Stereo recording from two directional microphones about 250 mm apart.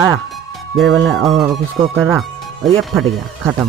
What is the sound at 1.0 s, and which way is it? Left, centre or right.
Speech, centre.